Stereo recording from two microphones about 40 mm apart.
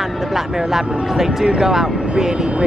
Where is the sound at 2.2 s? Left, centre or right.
Right.